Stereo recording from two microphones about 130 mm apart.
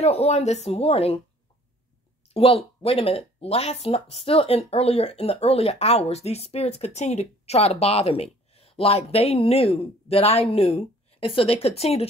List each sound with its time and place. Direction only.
0.0 s speech: 55° left (ahead or behind)
2.3 s speech: 50° left (ahead or behind)